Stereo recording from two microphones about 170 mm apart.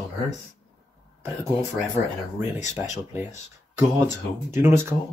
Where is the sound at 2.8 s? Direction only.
10° right (ahead or behind).